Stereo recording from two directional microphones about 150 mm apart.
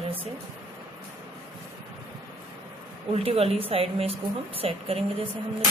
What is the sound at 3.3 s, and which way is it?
Speech, 40° right (ahead or behind).